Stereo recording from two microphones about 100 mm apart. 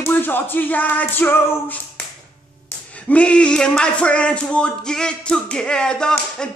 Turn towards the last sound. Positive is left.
turn(degrees=10)  # may be behind; listen again after turning